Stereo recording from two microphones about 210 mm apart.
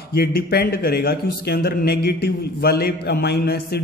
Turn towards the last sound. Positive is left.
turn(degrees=50)  # may be behind; listen again after turning